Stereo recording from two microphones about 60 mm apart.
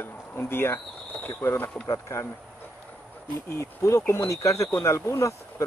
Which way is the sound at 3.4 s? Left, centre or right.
Left.